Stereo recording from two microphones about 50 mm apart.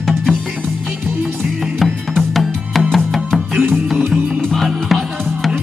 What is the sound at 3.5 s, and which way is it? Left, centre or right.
Music, right.